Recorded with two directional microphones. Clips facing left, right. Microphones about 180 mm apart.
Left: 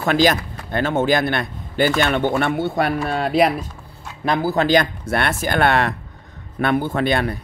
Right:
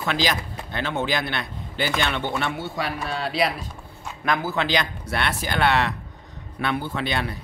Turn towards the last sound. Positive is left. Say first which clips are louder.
# left 7 dB
turn(degrees=50)  # may be behind; listen again after turning